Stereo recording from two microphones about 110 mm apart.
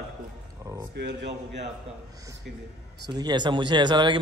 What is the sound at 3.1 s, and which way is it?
A man's voice, 40° right (ahead or behind).